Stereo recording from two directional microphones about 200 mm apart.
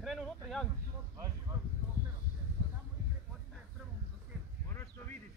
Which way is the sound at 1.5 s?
15° right (ahead or behind).